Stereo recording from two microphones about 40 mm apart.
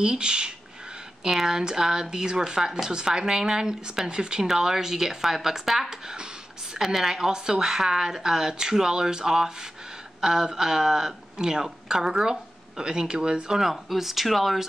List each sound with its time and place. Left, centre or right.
0.0 s speech: right
13.6 s speech: centre